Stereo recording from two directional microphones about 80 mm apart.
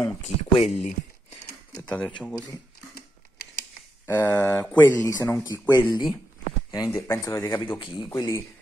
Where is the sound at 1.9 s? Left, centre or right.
Centre.